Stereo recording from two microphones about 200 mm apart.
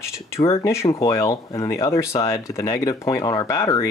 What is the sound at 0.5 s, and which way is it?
Speech, 15° left (ahead or behind).